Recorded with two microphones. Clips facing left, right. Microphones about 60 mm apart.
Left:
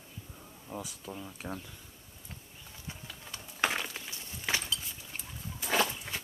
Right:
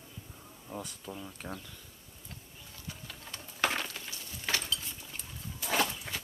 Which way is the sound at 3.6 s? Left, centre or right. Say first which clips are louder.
Even; centre.